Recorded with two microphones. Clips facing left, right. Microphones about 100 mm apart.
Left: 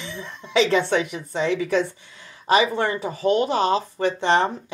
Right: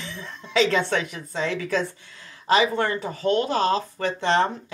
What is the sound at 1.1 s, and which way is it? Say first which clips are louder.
Speech: left 4 dB; 15° left (ahead or behind).